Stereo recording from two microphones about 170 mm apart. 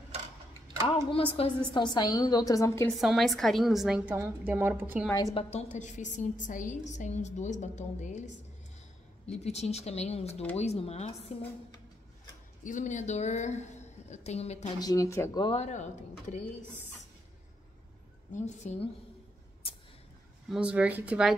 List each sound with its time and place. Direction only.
0.8 s a woman's voice: 30° left (ahead or behind)
3.0 s a woman's voice: centre (ahead or behind)
5.1 s a woman's voice: 25° left (ahead or behind)
5.4 s a woman's voice: 40° left (ahead or behind)
9.3 s speech: 40° left (ahead or behind)
12.6 s a woman's voice: 45° left (ahead or behind)
14.8 s a woman's voice: 20° left (ahead or behind)
15.4 s a woman's voice: 40° left (ahead or behind)
18.3 s a woman's voice: 45° left (ahead or behind)
20.4 s a woman's voice: 5° right (ahead or behind)